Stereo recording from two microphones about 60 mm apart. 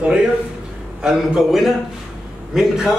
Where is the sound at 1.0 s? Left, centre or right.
Centre.